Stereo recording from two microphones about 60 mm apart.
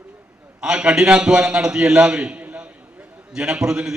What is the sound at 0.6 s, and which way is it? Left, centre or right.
A man's voice, centre.